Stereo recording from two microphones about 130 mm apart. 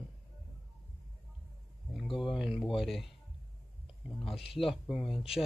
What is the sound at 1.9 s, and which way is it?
Speech, centre (ahead or behind).